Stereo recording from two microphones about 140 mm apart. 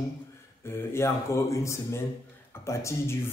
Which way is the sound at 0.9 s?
20° left (ahead or behind).